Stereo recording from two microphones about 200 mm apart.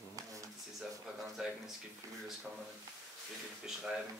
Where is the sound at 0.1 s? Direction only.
15° right (ahead or behind).